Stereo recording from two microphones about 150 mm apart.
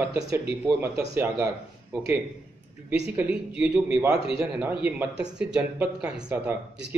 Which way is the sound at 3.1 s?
10° right (ahead or behind).